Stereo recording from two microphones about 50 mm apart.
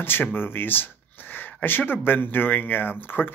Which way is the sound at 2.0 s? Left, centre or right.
Left.